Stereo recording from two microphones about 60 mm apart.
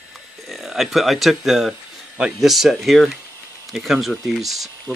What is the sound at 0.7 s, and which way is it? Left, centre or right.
Speech, centre.